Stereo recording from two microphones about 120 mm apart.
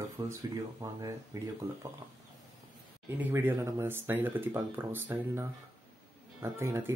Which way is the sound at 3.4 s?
20° right (ahead or behind).